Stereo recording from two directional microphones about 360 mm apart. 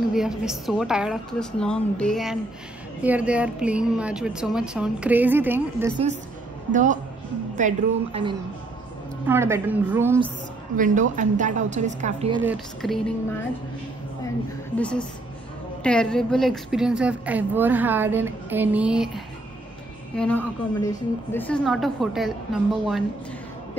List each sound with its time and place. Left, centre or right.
0.1 s a woman's voice: centre
6.7 s a woman's voice: right
10.8 s a woman's voice: right
12.4 s a woman's voice: centre
14.8 s a woman's voice: centre